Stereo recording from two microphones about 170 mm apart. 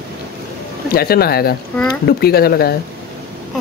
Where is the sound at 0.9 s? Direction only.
65° left (ahead or behind).